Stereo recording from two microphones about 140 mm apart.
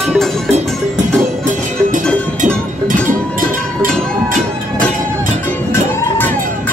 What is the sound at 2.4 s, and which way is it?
Cowbell, 70° right (ahead or behind).